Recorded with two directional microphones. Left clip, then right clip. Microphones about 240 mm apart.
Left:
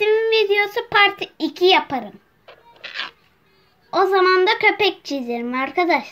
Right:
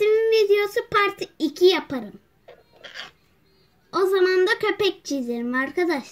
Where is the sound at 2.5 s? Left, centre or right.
Centre.